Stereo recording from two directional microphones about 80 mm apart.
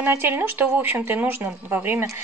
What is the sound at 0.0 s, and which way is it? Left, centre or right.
Speech, right.